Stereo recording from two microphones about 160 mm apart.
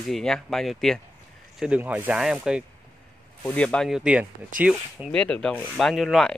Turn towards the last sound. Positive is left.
turn(degrees=0)  # may be behind; listen again after turning